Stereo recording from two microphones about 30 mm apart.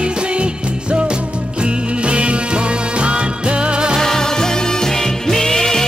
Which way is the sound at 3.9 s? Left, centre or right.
Centre.